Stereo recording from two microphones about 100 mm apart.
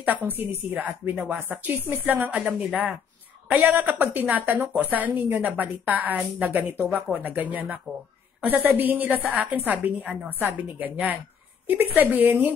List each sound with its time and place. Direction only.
0.0 s a woman's voice: 20° right (ahead or behind)